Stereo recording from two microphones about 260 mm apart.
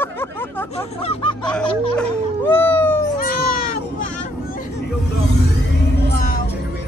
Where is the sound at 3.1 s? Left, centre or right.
Left.